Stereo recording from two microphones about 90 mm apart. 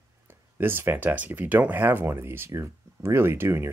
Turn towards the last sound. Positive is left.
turn(degrees=-25)  # may be behind; listen again after turning